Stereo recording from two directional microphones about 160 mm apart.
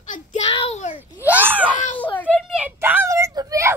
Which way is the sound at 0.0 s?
50° left (ahead or behind).